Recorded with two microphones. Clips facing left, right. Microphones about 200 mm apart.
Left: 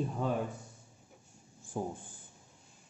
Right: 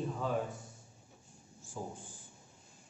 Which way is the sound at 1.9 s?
55° left (ahead or behind).